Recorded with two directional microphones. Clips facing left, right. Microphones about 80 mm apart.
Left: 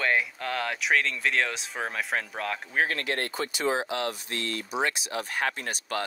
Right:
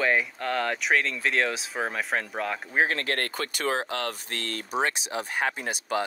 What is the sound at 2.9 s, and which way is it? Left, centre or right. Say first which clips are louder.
Speech: right 1 dB; right.